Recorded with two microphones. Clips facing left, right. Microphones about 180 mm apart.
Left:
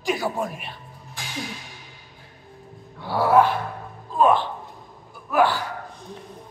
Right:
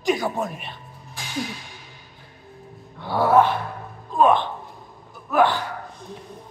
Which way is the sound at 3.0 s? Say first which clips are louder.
Even; 10° left (ahead or behind).